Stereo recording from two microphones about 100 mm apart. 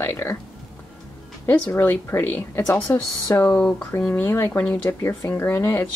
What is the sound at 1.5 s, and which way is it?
A woman's voice, 20° left (ahead or behind).